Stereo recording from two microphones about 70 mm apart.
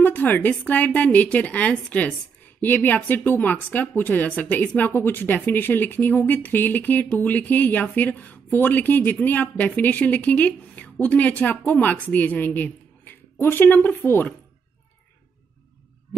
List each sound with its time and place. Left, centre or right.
0.0 s speech: left